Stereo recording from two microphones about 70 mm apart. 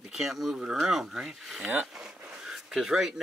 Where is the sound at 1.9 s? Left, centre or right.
Centre.